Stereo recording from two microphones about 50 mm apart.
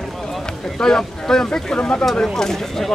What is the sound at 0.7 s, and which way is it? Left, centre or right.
Speech, centre.